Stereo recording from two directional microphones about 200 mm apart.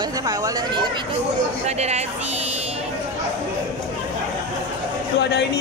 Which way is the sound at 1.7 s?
35° right (ahead or behind).